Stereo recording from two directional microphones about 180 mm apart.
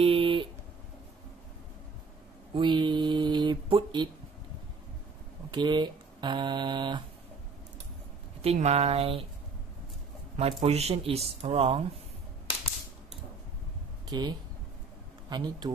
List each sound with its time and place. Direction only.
0.0 s a sound: 30° right (ahead or behind)
2.5 s mantra: 25° right (ahead or behind)
5.5 s speech: 25° right (ahead or behind)
8.4 s speech: 35° right (ahead or behind)
10.3 s speech: 35° right (ahead or behind)
14.0 s speech: 25° right (ahead or behind)